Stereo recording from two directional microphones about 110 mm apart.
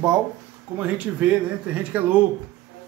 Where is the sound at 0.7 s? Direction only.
15° right (ahead or behind).